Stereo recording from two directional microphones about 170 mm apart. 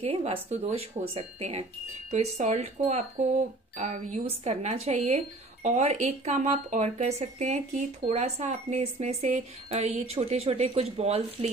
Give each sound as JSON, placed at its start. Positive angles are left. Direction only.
{"t": 0.0, "sound": "speech", "side_deg": -35}